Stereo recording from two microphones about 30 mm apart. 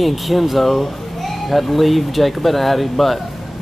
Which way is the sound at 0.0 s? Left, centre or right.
Centre.